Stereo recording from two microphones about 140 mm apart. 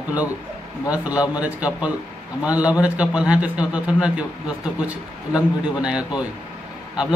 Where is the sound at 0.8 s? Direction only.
10° right (ahead or behind).